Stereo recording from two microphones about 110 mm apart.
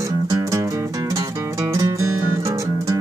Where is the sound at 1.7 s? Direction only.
25° right (ahead or behind).